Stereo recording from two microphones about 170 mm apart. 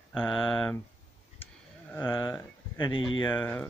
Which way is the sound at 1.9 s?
20° left (ahead or behind).